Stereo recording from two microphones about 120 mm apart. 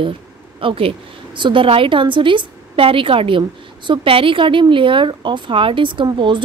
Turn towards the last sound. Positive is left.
turn(degrees=-40)  # may be behind; listen again after turning